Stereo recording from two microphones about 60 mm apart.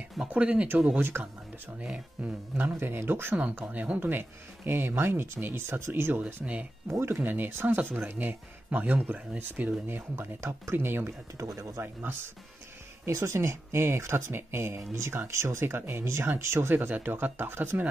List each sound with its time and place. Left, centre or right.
0.3 s speech: right
0.9 s speech: right
1.8 s speech: centre
2.5 s speech: right
3.5 s speech: right
4.1 s speech: right
6.2 s speech: right
6.9 s speech: right
9.8 s speech: right
11.3 s speech: right
11.8 s speech: right
13.1 s speech: right